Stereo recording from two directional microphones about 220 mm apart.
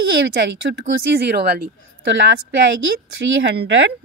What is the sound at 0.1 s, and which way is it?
A woman's voice, 55° right (ahead or behind).